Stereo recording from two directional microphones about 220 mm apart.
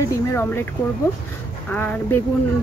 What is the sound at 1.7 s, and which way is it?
Speech, 10° left (ahead or behind).